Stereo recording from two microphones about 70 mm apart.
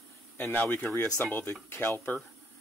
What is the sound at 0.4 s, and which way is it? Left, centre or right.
Speech, left.